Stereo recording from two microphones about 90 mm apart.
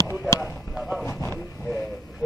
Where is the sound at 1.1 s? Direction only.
30° left (ahead or behind).